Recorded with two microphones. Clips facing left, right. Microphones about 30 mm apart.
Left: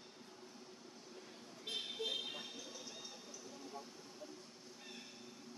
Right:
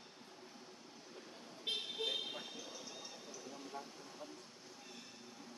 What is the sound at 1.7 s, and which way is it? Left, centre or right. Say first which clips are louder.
Vehicle: right 3 dB; right.